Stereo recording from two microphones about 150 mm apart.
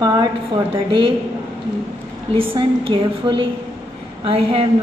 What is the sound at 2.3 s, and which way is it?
A woman's voice, 35° right (ahead or behind).